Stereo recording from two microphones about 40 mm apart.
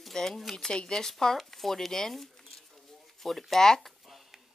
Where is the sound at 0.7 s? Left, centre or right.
Centre.